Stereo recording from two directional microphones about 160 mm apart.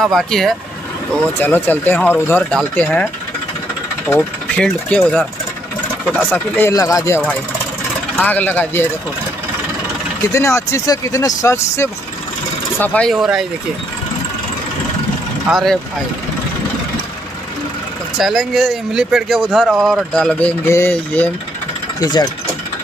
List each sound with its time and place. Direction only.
0.0 s speech: centre (ahead or behind)
4.1 s speech: 5° left (ahead or behind)
6.7 s speech: 20° left (ahead or behind)
10.3 s speech: 20° left (ahead or behind); by 13.5 s centre (ahead or behind)
15.5 s speech: centre (ahead or behind)
18.2 s speech: centre (ahead or behind)
22.0 s speech: 25° left (ahead or behind)